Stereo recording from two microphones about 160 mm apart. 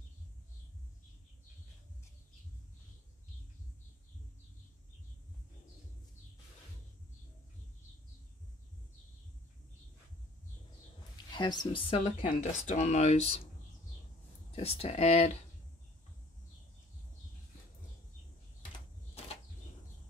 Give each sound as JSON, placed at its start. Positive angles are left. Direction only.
{"t": 11.2, "sound": "speech", "side_deg": 25}
{"t": 12.0, "sound": "speech", "side_deg": 50}
{"t": 14.5, "sound": "speech", "side_deg": 40}